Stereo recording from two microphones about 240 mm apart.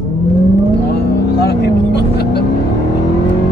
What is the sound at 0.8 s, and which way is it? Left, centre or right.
Vehicle, left.